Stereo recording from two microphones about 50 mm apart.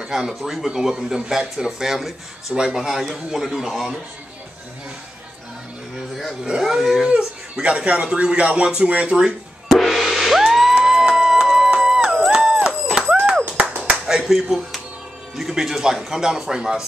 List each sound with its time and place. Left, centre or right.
0.0 s speech: centre
2.5 s speech: centre
5.9 s a sound: centre
6.6 s speech: centre
7.1 s speech: right
9.7 s music: centre
12.3 s a sound: centre
12.9 s music: right
13.6 s clapping: right
14.0 s speech: centre